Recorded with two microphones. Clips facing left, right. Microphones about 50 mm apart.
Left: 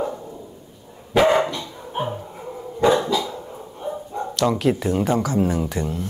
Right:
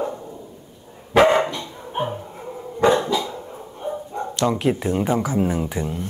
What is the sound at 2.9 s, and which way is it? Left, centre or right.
Dog, right.